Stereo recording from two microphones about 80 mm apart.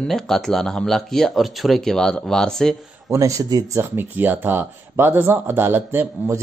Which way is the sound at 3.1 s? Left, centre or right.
Right.